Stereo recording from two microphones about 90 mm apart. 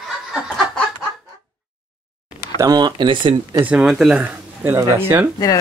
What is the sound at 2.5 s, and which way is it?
Speech, 45° right (ahead or behind).